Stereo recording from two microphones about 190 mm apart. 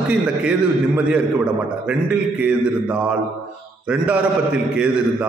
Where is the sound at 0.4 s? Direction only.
5° right (ahead or behind).